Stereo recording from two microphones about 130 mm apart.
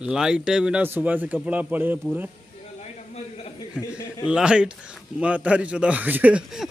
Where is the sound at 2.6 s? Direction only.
55° left (ahead or behind).